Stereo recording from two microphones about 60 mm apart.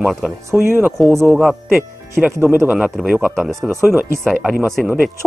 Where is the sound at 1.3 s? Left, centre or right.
Centre.